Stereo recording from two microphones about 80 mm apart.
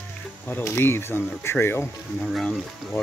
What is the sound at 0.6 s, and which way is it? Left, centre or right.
Speech, left.